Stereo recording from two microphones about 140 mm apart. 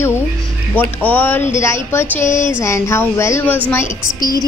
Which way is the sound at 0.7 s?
10° left (ahead or behind).